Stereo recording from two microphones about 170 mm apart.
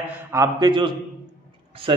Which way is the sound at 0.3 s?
20° right (ahead or behind).